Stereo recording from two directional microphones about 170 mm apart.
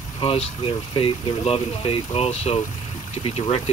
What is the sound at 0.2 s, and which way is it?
Speech, 35° left (ahead or behind).